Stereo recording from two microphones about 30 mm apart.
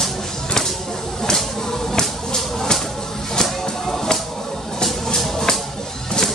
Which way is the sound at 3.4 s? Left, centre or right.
Centre.